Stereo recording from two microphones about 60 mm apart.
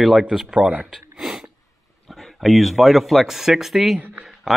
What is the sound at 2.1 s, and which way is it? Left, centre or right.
Speech, centre.